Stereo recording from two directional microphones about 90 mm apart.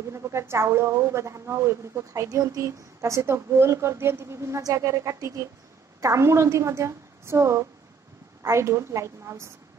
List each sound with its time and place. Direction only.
0.1 s speech: 30° right (ahead or behind)